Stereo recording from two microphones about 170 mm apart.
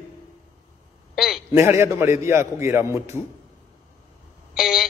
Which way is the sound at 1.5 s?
15° right (ahead or behind).